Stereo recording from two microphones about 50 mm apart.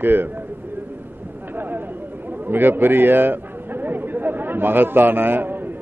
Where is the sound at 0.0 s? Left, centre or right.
Right.